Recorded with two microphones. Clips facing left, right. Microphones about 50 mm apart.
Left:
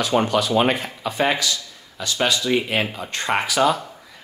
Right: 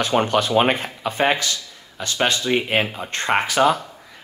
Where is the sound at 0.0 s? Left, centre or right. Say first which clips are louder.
Right 1 dB; right.